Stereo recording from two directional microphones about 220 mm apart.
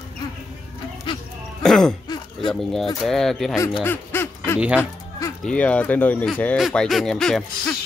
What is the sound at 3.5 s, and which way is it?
Speech, 15° left (ahead or behind).